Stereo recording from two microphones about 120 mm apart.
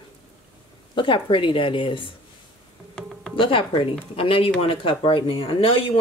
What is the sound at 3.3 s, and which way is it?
Speech, 45° left (ahead or behind).